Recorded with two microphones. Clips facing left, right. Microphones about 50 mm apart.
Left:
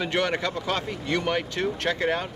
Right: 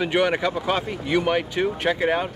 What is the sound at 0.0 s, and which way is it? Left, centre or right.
Speech, centre.